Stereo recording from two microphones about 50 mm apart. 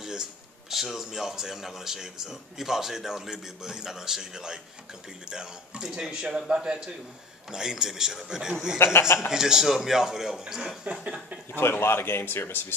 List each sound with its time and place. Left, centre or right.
0.0 s a man's voice: centre
8.7 s a man's voice: left
9.3 s a man's voice: centre
11.6 s a man's voice: left